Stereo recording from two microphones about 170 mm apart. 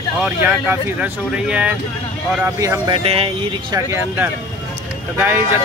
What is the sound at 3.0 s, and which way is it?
Speech, 35° right (ahead or behind).